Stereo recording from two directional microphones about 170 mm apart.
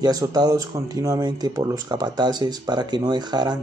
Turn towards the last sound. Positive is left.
turn(degrees=-25)  # may be behind; listen again after turning